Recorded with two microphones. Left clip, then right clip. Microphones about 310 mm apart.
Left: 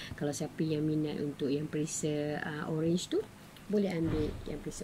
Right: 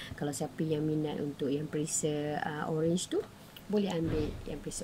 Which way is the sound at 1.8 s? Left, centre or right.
Right.